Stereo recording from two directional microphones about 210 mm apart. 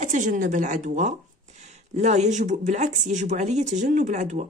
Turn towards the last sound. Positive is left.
turn(degrees=-35)  # may be behind; listen again after turning